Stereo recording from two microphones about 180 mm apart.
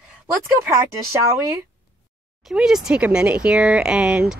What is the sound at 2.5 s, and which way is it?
Speech, centre (ahead or behind).